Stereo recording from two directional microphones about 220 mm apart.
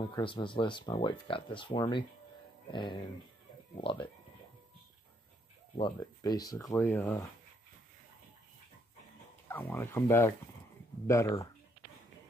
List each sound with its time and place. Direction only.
0.0 s speech: 20° left (ahead or behind)
5.8 s speech: 20° left (ahead or behind)
9.5 s speech: 10° left (ahead or behind)